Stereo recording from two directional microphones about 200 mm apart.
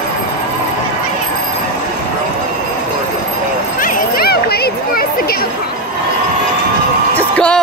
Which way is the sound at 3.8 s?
45° left (ahead or behind).